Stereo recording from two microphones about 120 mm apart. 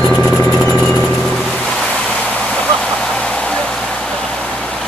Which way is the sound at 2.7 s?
5° left (ahead or behind).